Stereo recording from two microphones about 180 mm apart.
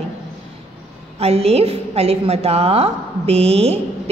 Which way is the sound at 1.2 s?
35° right (ahead or behind).